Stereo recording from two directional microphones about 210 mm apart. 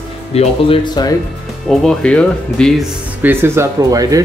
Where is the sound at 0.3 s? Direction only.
25° left (ahead or behind).